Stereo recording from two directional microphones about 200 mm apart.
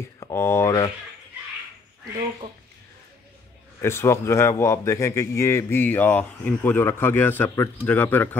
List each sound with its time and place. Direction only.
0.2 s speech: 15° left (ahead or behind)
3.8 s a man's voice: 15° left (ahead or behind)